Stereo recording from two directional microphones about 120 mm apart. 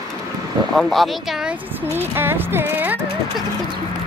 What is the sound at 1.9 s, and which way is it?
Speech, 20° right (ahead or behind).